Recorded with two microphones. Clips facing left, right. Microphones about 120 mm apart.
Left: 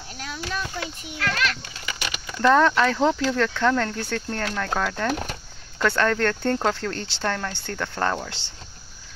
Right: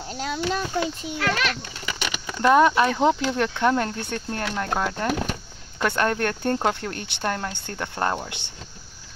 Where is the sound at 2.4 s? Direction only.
15° right (ahead or behind).